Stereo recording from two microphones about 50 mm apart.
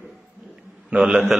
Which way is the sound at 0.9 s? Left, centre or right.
Centre.